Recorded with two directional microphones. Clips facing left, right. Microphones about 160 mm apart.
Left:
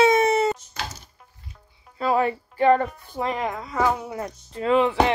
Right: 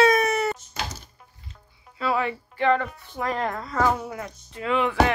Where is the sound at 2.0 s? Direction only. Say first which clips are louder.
Left 4 dB; 40° left (ahead or behind).